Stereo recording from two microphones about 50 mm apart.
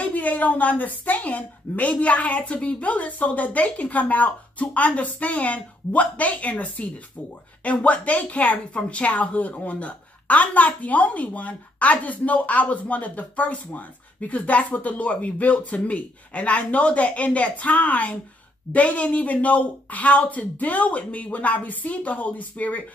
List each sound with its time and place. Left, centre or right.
0.0 s a woman's voice: left